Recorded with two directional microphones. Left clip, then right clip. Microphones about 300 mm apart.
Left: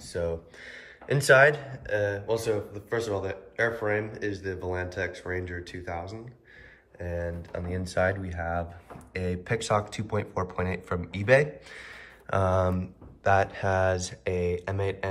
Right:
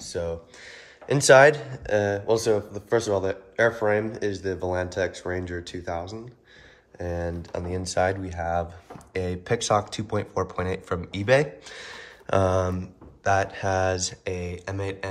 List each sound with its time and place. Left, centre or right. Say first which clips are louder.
0.0 s speech: right 1 dB; centre